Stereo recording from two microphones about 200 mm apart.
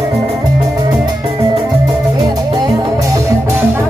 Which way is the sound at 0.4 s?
20° right (ahead or behind).